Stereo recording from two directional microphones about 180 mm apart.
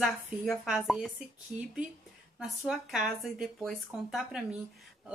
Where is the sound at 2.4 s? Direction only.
Centre (ahead or behind).